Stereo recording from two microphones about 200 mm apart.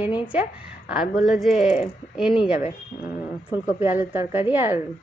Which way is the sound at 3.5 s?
10° right (ahead or behind).